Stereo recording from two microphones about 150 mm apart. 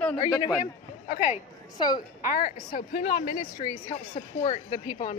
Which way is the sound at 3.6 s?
45° left (ahead or behind).